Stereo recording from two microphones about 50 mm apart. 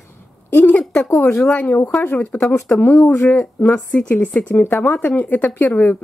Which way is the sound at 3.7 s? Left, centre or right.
Left.